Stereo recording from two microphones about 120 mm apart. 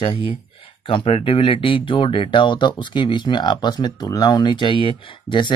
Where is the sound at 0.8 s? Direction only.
50° left (ahead or behind).